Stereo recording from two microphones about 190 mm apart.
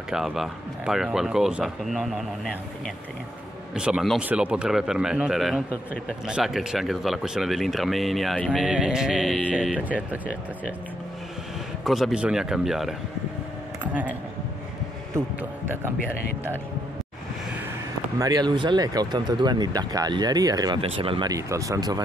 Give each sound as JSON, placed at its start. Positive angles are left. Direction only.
{"t": 0.1, "sound": "speech", "side_deg": 0}
{"t": 3.7, "sound": "speech", "side_deg": -5}
{"t": 11.8, "sound": "speech", "side_deg": 0}
{"t": 15.1, "sound": "a man's voice", "side_deg": -10}
{"t": 18.2, "sound": "speech", "side_deg": -20}